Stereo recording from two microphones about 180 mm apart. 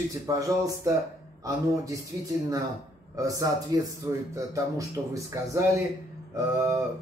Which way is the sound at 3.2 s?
20° right (ahead or behind).